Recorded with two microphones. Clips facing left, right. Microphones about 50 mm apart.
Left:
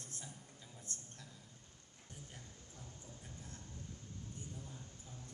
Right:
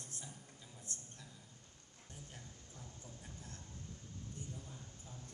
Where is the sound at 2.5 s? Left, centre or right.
Left.